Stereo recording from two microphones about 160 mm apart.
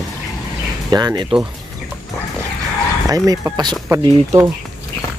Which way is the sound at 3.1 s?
25° right (ahead or behind).